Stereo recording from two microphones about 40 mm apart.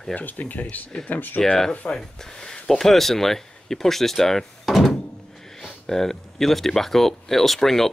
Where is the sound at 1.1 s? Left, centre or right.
Left.